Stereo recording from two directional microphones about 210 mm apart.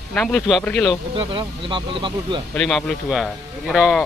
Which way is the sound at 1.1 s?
25° right (ahead or behind).